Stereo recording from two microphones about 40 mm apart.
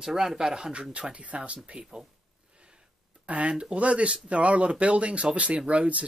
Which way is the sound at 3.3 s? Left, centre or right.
Right.